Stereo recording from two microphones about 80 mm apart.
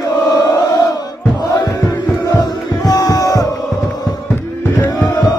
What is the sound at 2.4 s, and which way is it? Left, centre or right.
Music, left.